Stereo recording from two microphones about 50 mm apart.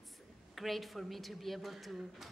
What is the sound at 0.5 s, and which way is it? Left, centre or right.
Speech, centre.